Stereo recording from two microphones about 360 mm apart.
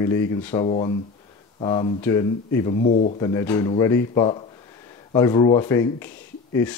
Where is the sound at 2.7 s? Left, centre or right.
Left.